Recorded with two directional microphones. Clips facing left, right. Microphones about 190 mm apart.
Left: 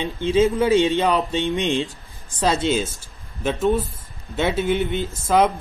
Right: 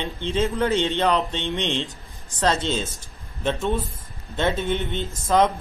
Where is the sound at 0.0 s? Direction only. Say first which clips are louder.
Left 6 dB; 10° left (ahead or behind).